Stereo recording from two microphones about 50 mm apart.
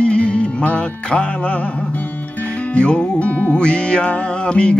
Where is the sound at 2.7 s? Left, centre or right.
Left.